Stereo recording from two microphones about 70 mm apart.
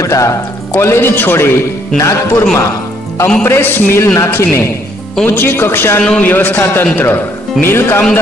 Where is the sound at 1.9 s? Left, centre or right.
Left.